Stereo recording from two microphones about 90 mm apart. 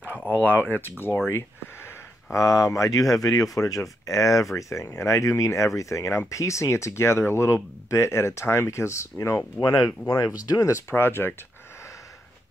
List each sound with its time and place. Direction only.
0.1 s a sound: 20° right (ahead or behind)
0.4 s speech: 20° left (ahead or behind)
2.3 s speech: 35° left (ahead or behind)
9.6 s speech: 45° left (ahead or behind); by 11.3 s 25° left (ahead or behind)